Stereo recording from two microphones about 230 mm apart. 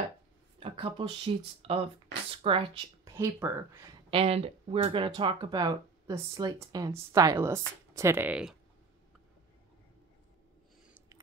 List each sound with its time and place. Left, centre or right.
0.6 s speech: right
4.1 s speech: right; by 8.5 s centre